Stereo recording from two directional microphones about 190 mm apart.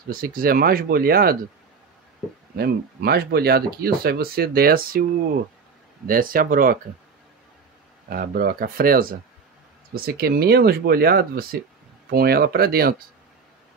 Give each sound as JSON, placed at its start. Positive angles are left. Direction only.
{"t": 0.1, "sound": "speech", "side_deg": -50}
{"t": 2.5, "sound": "speech", "side_deg": -55}
{"t": 6.0, "sound": "speech", "side_deg": -50}
{"t": 8.1, "sound": "speech", "side_deg": -50}